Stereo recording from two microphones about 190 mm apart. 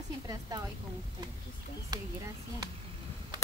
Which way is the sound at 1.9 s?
20° right (ahead or behind).